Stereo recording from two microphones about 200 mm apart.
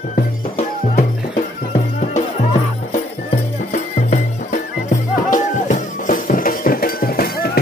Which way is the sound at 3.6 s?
40° left (ahead or behind).